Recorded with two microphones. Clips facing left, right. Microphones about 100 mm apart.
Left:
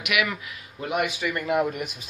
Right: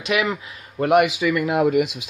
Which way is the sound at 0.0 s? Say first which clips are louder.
Right 4 dB; 30° right (ahead or behind).